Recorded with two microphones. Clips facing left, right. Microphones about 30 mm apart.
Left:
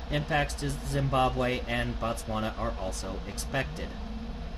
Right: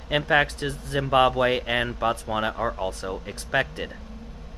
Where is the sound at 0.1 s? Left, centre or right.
Right.